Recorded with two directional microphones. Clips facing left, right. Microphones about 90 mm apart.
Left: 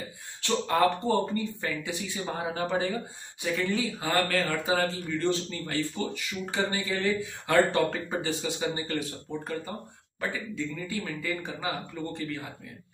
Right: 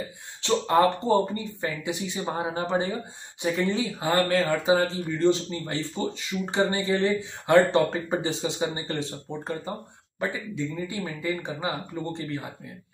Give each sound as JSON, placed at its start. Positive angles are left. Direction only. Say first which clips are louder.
{"t": 0.4, "sound": "speech", "louder": "right 4 dB", "side_deg": -20}